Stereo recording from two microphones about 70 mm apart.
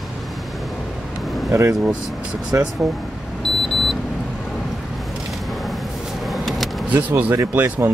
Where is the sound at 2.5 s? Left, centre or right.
Right.